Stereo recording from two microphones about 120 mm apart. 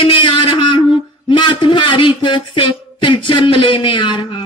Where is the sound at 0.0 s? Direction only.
45° left (ahead or behind).